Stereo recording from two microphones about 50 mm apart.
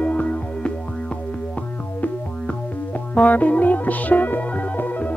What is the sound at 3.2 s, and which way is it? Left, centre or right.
Music, left.